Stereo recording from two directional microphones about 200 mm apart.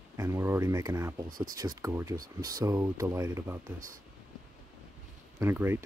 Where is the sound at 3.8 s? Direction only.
40° right (ahead or behind).